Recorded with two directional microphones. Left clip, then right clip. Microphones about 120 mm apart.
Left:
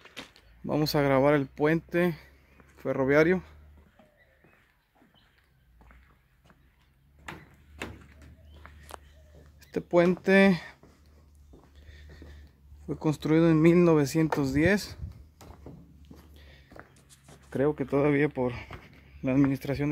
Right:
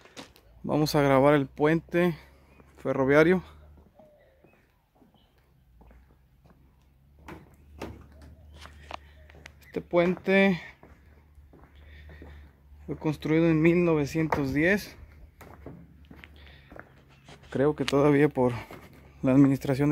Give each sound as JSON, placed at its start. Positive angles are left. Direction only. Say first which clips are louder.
{"t": 0.1, "sound": "a sound", "louder": "left 1 dB", "side_deg": -25}
{"t": 0.7, "sound": "speech", "louder": "right 2 dB", "side_deg": -5}
{"t": 9.6, "sound": "a sound", "louder": "left 1 dB", "side_deg": 40}
{"t": 10.2, "sound": "speech", "louder": "left 1 dB", "side_deg": 35}
{"t": 12.8, "sound": "speech", "louder": "left 1 dB", "side_deg": 35}
{"t": 13.7, "sound": "speech", "louder": "left 2 dB", "side_deg": 50}
{"t": 14.4, "sound": "speech", "louder": "even", "side_deg": 30}
{"t": 16.1, "sound": "walk", "louder": "right 5 dB", "side_deg": 0}
{"t": 17.5, "sound": "speech", "louder": "right 2 dB", "side_deg": -10}
{"t": 18.1, "sound": "speech", "louder": "right 4 dB", "side_deg": -35}